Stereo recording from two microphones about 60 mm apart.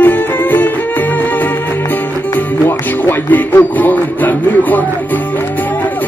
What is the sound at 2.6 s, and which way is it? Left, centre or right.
Music, left.